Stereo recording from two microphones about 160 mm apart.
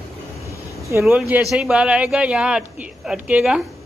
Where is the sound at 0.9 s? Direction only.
15° right (ahead or behind).